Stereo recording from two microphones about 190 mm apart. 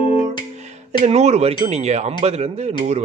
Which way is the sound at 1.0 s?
35° right (ahead or behind).